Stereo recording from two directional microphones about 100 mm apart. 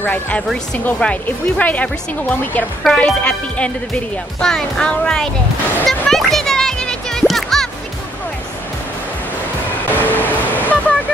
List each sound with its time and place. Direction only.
0.0 s speech: 15° left (ahead or behind)
2.8 s speech: 5° left (ahead or behind)
5.9 s music: 5° left (ahead or behind)
9.9 s vehicle: 20° left (ahead or behind)